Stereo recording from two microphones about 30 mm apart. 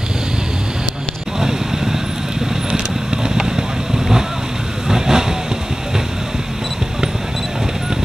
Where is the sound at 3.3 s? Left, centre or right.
Centre.